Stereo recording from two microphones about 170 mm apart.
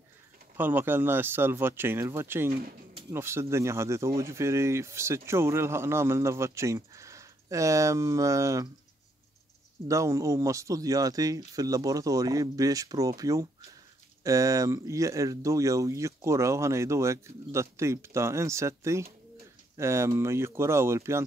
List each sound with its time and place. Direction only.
0.6 s speech: 10° right (ahead or behind)
9.8 s speech: 15° right (ahead or behind)